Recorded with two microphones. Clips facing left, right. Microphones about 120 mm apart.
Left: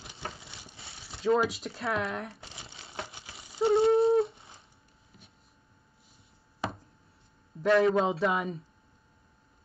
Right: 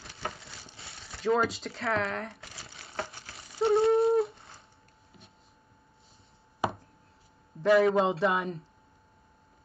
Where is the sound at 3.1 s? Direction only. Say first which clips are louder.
Right 1 dB; 20° left (ahead or behind).